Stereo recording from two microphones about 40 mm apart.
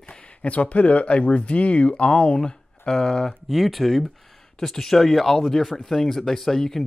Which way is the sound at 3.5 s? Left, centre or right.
Centre.